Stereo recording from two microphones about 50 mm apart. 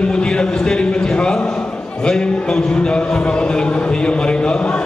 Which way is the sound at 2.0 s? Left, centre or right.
Centre.